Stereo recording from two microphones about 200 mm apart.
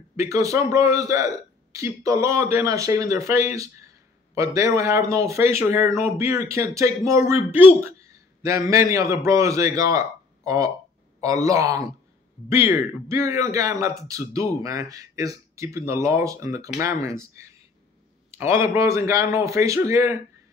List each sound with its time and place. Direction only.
0.1 s a man's voice: 15° right (ahead or behind)